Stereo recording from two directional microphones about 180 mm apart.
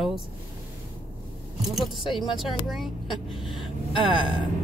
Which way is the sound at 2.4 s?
Centre (ahead or behind).